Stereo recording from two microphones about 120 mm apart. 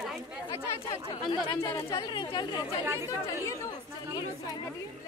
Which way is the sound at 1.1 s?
40° left (ahead or behind).